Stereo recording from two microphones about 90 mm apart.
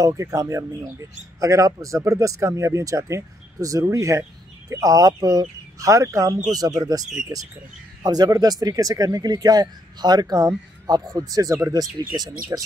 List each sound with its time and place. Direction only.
0.0 s a man's voice: 40° right (ahead or behind)